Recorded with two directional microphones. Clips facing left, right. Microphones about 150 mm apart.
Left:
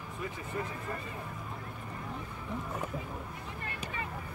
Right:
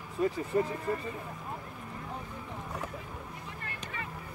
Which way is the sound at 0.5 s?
30° right (ahead or behind).